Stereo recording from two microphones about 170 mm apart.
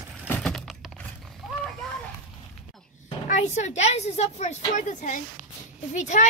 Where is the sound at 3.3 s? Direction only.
45° left (ahead or behind).